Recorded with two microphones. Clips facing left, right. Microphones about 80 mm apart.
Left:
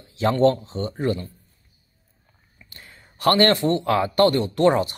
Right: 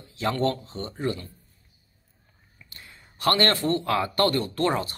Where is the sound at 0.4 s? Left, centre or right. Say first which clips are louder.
Left 8 dB; left.